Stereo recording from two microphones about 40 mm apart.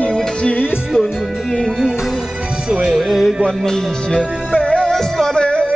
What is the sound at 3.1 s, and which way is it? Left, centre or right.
Music, centre.